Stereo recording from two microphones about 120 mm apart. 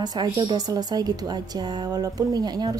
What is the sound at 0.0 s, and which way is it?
A woman's voice, 35° right (ahead or behind).